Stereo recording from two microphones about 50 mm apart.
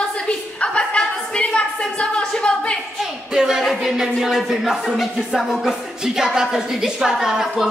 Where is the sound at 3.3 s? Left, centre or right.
Centre.